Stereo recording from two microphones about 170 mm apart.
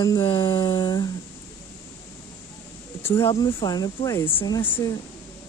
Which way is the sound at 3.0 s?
15° left (ahead or behind).